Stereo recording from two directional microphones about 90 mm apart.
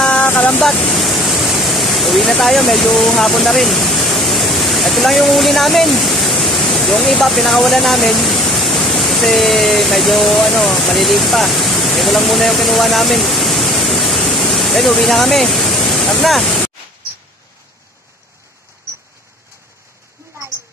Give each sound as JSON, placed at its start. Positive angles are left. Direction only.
{"t": 0.0, "sound": "vehicle", "side_deg": 20}
{"t": 0.7, "sound": "speech", "side_deg": 0}